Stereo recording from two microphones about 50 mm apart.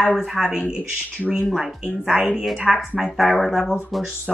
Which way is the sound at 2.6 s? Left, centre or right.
Centre.